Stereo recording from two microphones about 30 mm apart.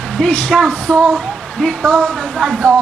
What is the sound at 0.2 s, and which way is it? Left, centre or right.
Speech, left.